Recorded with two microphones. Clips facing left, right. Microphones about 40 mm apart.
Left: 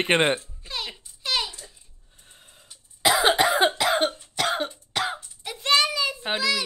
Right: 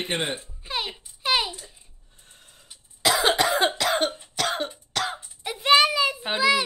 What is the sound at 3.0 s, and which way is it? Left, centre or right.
Cough, centre.